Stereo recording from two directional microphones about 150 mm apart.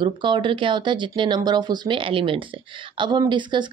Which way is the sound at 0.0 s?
30° right (ahead or behind).